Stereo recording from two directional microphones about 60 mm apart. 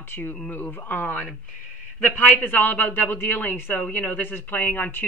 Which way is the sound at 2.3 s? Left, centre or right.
Left.